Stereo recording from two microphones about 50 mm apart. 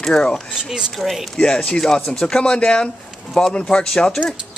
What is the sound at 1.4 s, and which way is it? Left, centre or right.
Speech, centre.